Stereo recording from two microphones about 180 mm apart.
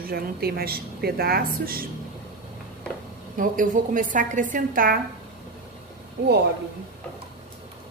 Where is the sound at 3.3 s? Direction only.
45° right (ahead or behind).